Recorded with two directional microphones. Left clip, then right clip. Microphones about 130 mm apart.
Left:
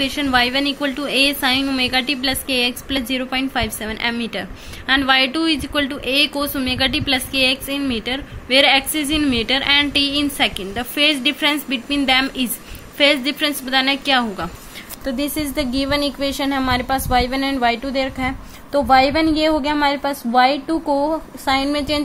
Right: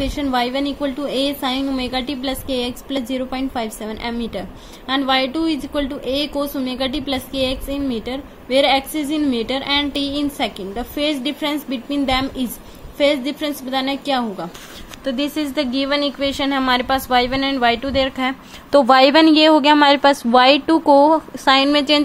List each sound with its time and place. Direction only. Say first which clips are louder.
0.0 s a woman's voice: left 3 dB; 15° right (ahead or behind)
18.7 s a woman's voice: right 3 dB; 35° right (ahead or behind)